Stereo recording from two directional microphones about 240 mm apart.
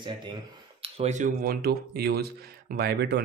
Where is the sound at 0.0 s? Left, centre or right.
Centre.